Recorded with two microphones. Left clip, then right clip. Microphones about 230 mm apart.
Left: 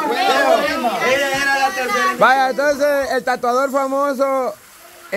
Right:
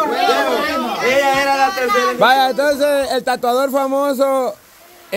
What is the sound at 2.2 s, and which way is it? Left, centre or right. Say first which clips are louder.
A man's voice: even; centre.